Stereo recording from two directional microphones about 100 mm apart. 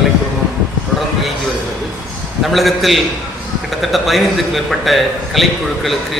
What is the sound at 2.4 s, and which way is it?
A man's voice, centre (ahead or behind).